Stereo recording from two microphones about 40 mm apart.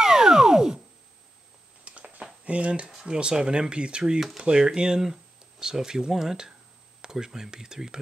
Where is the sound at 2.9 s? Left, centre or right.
Centre.